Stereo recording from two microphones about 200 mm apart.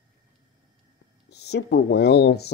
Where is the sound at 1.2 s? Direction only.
55° left (ahead or behind).